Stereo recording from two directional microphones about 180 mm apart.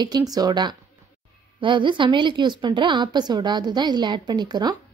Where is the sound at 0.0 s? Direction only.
20° right (ahead or behind).